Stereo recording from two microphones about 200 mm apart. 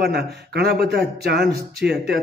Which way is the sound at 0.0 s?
55° right (ahead or behind).